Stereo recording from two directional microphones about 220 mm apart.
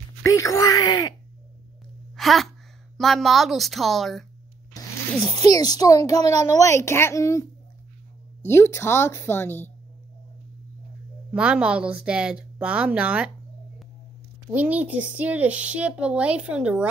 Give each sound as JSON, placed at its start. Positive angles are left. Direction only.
{"t": 0.2, "sound": "a child's voice", "side_deg": 15}
{"t": 2.1, "sound": "speech", "side_deg": 0}
{"t": 5.5, "sound": "a child's voice", "side_deg": 15}
{"t": 8.5, "sound": "a child's voice", "side_deg": 10}
{"t": 11.3, "sound": "speech", "side_deg": -5}
{"t": 14.5, "sound": "speech", "side_deg": -5}